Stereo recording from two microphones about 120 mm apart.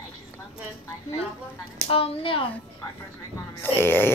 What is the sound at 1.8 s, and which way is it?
Speech, 50° left (ahead or behind).